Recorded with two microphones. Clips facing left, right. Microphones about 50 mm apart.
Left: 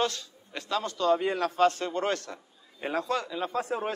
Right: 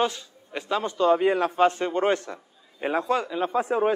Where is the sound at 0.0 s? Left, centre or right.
Centre.